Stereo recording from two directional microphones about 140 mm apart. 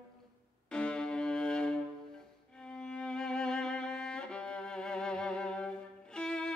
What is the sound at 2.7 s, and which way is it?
Violin, 5° left (ahead or behind).